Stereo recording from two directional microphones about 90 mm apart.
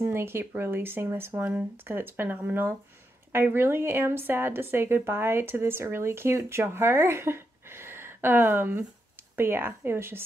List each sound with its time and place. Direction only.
0.0 s speech: 25° right (ahead or behind)